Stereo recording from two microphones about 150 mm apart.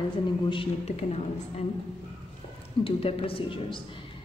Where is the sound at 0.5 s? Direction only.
40° left (ahead or behind).